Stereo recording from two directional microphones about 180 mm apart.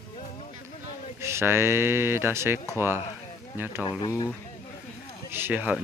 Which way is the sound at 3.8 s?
25° left (ahead or behind).